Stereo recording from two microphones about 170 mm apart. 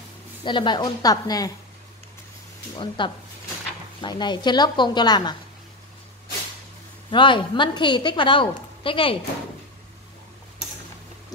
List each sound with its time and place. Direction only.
0.4 s a woman's voice: 30° left (ahead or behind)
3.0 s a woman's voice: 30° left (ahead or behind)
7.1 s a woman's voice: 30° left (ahead or behind)